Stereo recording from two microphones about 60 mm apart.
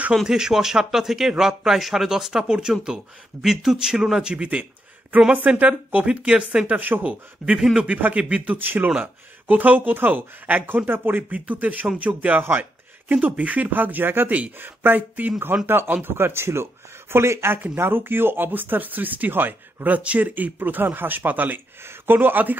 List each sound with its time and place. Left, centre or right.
0.1 s speech: centre
6.8 s speech: right
7.5 s speech: centre
7.9 s speech: right
8.5 s speech: right
11.2 s speech: right